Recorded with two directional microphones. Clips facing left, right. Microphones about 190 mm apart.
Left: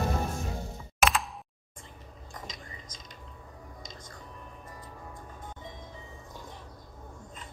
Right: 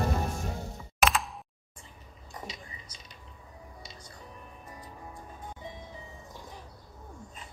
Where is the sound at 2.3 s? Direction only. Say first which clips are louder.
Right 2 dB; 10° right (ahead or behind).